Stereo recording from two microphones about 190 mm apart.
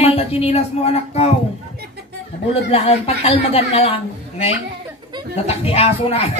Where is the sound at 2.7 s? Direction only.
30° left (ahead or behind).